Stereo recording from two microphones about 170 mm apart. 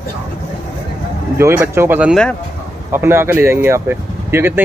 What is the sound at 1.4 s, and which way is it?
Speech, 15° right (ahead or behind).